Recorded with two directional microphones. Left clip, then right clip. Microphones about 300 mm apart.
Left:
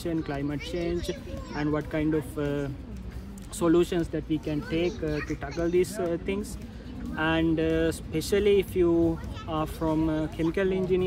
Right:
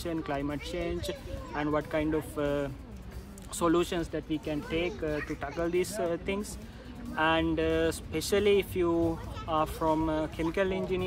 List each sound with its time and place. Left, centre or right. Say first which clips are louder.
0.0 s speech: left 2 dB; centre
5.1 s speech: left 2 dB; right
5.6 s speech: left 4 dB; centre